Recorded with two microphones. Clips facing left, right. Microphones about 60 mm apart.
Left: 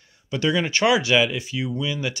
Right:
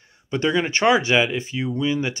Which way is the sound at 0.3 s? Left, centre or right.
Right.